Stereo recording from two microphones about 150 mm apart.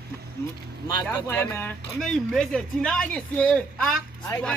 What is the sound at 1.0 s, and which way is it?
Speech, 15° left (ahead or behind).